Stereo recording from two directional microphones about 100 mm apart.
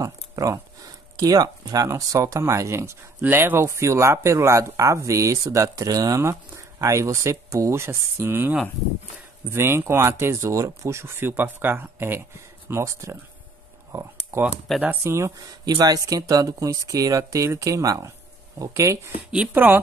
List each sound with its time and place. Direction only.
0.0 s a sound: 35° right (ahead or behind)
1.1 s speech: 40° right (ahead or behind)
14.3 s speech: 30° right (ahead or behind)
15.6 s speech: 40° right (ahead or behind)
19.3 s speech: 15° right (ahead or behind)